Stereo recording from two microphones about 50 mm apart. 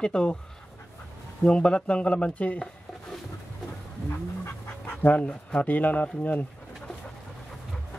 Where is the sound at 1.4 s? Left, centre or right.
Centre.